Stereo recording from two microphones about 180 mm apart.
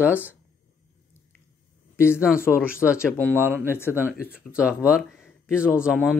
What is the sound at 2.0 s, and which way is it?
Speech, 5° right (ahead or behind).